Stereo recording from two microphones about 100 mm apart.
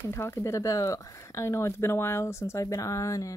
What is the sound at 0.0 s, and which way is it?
Speech, 25° left (ahead or behind).